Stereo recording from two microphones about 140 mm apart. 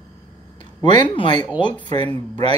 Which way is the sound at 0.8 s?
35° left (ahead or behind).